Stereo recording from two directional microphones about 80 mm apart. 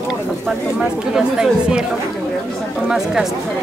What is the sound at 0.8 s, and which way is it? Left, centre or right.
Speech, centre.